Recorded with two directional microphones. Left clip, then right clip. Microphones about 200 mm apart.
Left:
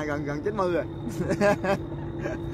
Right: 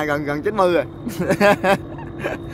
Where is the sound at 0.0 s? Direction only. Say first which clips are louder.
Right 8 dB; 35° right (ahead or behind).